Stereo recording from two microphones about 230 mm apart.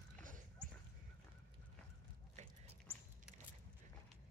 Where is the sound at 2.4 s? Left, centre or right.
Right.